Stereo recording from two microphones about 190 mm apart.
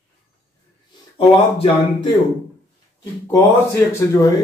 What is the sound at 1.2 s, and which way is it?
Speech, 30° left (ahead or behind).